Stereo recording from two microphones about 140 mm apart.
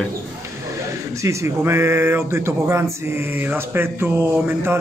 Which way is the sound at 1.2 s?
20° right (ahead or behind).